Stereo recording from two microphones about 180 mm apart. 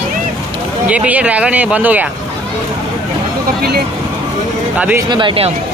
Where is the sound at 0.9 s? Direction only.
5° right (ahead or behind).